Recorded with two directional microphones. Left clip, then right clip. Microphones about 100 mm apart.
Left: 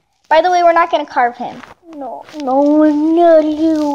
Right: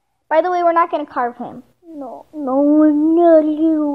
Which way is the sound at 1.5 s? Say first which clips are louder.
Left 5 dB; 20° left (ahead or behind).